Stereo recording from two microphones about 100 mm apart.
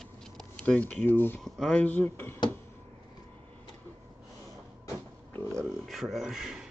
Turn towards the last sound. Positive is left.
turn(degrees=-5)  # may be behind; listen again after turning